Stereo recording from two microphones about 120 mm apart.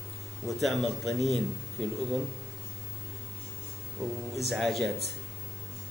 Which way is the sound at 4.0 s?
25° right (ahead or behind).